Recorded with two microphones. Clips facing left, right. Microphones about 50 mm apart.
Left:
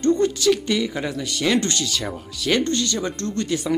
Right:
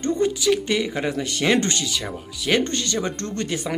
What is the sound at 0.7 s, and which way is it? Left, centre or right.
Speech, right.